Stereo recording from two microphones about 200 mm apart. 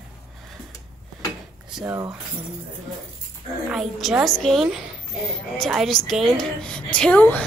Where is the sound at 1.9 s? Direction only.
15° right (ahead or behind).